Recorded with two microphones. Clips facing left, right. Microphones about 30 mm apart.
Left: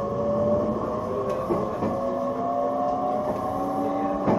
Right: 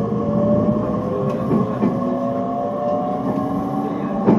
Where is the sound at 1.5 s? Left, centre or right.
Right.